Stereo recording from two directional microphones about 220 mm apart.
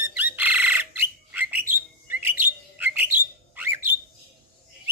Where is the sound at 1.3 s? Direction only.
10° right (ahead or behind).